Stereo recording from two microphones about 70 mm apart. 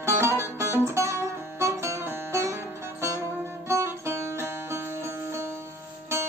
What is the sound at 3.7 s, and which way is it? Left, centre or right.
Music, right.